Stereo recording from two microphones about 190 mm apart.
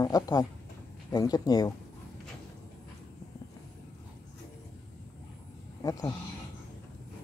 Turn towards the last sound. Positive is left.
turn(degrees=20)  # may be behind; listen again after turning